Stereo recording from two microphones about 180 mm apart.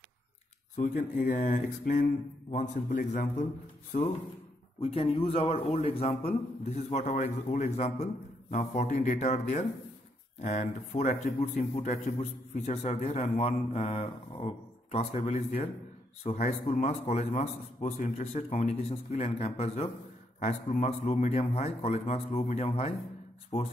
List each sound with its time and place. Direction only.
0.7 s speech: 50° left (ahead or behind)
4.7 s a man's voice: 30° left (ahead or behind)